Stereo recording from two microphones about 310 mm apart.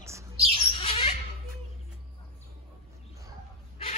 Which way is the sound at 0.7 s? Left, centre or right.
Centre.